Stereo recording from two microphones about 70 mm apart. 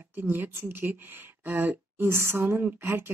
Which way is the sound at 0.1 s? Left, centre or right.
Right.